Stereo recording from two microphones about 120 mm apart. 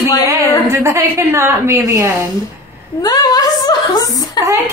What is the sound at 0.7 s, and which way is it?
A woman's voice, 25° right (ahead or behind).